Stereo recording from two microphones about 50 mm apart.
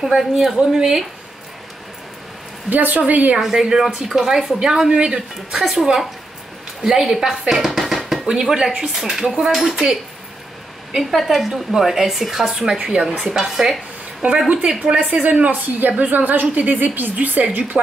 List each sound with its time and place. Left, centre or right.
0.0 s a woman's voice: centre
2.7 s a woman's voice: right
3.3 s a woman's voice: centre
11.0 s a woman's voice: centre
12.8 s speech: centre
13.4 s a woman's voice: centre
15.0 s a woman's voice: right